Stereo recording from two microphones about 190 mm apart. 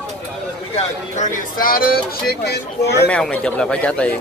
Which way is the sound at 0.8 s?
40° left (ahead or behind).